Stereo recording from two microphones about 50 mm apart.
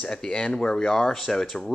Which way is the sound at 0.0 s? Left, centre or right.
Centre.